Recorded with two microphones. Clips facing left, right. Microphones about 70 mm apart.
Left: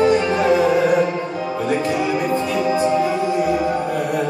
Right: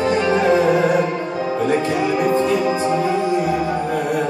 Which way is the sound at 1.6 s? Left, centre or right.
Right.